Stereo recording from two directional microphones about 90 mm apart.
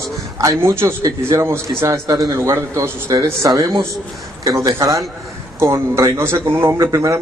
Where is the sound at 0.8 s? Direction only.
40° right (ahead or behind).